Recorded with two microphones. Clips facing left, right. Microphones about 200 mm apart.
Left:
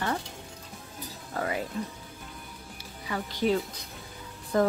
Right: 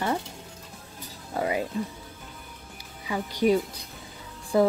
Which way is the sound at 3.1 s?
15° right (ahead or behind).